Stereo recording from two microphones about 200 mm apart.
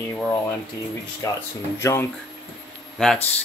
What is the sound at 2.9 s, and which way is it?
Speech, centre (ahead or behind).